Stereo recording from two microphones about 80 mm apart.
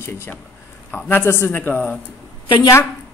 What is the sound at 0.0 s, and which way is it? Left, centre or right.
A man's voice, left.